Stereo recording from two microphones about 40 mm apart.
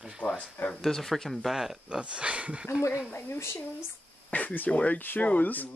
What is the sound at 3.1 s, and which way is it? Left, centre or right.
Speech, left.